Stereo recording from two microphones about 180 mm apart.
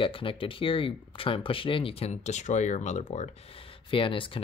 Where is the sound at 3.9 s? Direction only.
30° left (ahead or behind).